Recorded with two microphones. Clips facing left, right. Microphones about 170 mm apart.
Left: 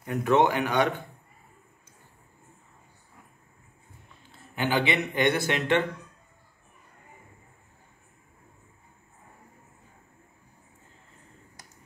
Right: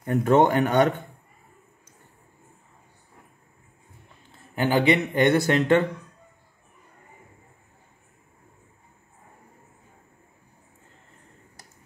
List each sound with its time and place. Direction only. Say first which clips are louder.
0.0 s speech: right 4 dB; 45° right (ahead or behind)
4.6 s speech: right 5 dB; 45° right (ahead or behind)